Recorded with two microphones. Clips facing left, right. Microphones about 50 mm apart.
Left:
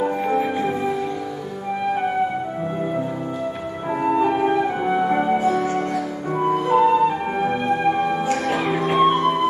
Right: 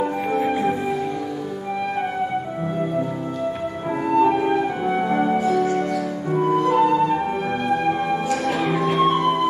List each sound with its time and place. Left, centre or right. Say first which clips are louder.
0.0 s music: left 1 dB; centre
4.0 s music: right 1 dB; centre
5.4 s music: even; left
6.3 s music: even; centre
9.2 s music: even; centre